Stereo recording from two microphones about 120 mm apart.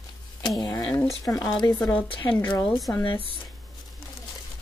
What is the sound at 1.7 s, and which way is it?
Speech, 15° left (ahead or behind).